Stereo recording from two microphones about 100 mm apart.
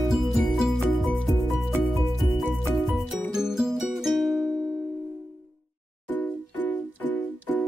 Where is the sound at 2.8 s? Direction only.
5° right (ahead or behind).